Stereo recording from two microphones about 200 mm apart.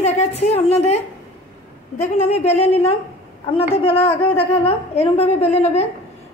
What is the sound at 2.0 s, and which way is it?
A woman's voice, 35° left (ahead or behind).